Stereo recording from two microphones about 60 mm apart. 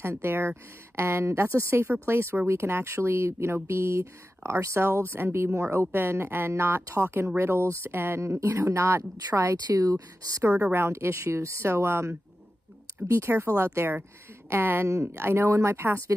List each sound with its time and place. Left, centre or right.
0.0 s speech: right
8.4 s speech: right
9.8 s speech: right
10.5 s speech: right
10.8 s speech: right